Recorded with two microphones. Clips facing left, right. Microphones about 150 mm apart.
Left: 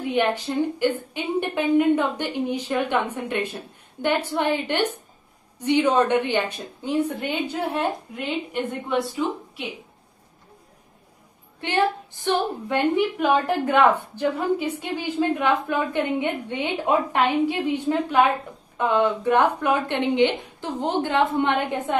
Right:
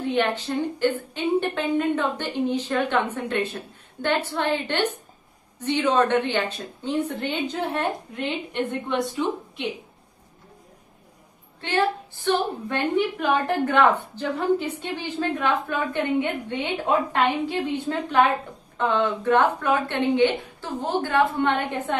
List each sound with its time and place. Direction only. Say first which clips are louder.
0.0 s a woman's voice: left 1 dB; 10° left (ahead or behind)
11.6 s a woman's voice: left 1 dB; 15° left (ahead or behind)